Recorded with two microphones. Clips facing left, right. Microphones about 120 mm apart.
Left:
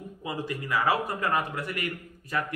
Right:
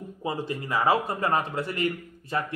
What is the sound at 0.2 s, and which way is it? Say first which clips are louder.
Speech: right 3 dB; 30° right (ahead or behind).